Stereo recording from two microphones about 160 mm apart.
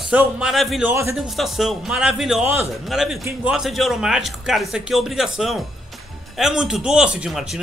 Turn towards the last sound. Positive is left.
turn(degrees=0)  # may be behind; listen again after turning